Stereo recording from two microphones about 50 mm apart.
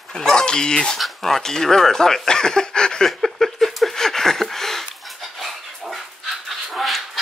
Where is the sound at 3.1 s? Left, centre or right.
Centre.